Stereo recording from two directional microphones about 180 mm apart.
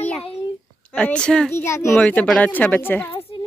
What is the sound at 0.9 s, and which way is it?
Speech, 5° left (ahead or behind).